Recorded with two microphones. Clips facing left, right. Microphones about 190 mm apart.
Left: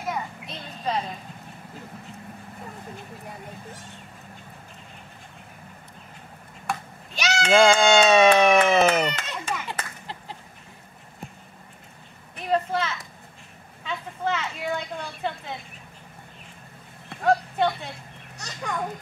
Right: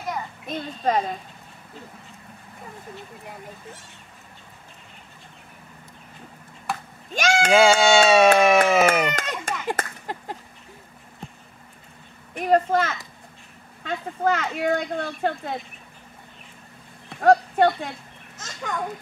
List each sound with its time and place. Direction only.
0.5 s a woman's voice: 45° right (ahead or behind)
6.7 s a sound: centre (ahead or behind)
7.2 s speech: 50° right (ahead or behind)
7.5 s speech: 5° right (ahead or behind)
9.1 s a sound: 45° right (ahead or behind)
12.4 s a woman's voice: 45° right (ahead or behind)
13.8 s speech: 55° right (ahead or behind)
14.8 s a woman's voice: 45° right (ahead or behind)
17.2 s speech: 45° right (ahead or behind)
18.4 s a child's voice: centre (ahead or behind)